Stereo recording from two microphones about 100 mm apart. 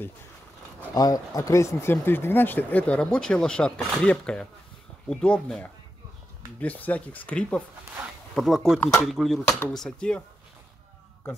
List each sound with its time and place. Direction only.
0.9 s speech: 40° left (ahead or behind); by 7.6 s 15° left (ahead or behind)
8.4 s speech: centre (ahead or behind)